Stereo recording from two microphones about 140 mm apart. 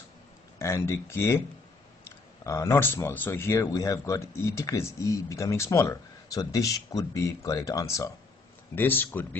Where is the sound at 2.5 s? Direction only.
20° left (ahead or behind).